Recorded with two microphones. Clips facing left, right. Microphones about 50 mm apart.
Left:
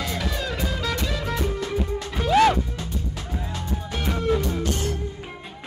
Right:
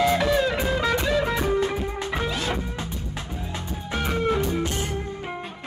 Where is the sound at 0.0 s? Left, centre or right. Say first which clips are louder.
Right 8 dB; right.